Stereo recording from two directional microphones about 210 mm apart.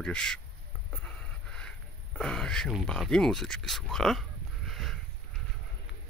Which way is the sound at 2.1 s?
5° left (ahead or behind).